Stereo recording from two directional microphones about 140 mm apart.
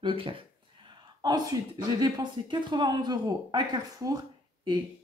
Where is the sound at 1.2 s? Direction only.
25° right (ahead or behind).